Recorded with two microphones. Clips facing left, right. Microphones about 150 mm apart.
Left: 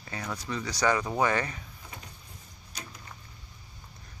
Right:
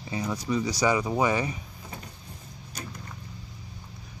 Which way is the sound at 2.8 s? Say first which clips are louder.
Right 4 dB; 50° right (ahead or behind).